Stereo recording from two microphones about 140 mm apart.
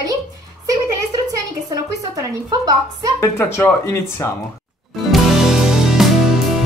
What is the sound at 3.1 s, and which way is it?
Speech, 20° left (ahead or behind).